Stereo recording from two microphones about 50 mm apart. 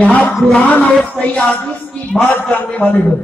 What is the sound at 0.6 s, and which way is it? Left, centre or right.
Speech, left.